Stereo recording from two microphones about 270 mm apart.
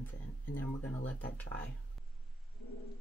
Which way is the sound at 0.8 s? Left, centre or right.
Left.